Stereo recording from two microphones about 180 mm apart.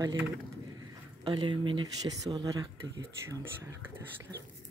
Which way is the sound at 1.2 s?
25° right (ahead or behind).